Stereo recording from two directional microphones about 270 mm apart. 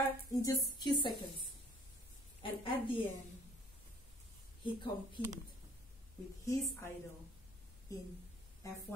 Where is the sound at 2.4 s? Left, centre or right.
Centre.